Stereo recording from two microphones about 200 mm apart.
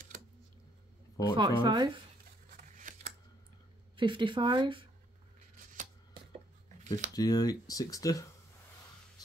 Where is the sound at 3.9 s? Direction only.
25° right (ahead or behind).